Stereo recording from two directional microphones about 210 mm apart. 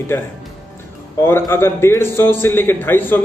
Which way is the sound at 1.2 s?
10° left (ahead or behind).